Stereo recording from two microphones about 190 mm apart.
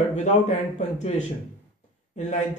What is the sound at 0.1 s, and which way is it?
Speech, 40° left (ahead or behind).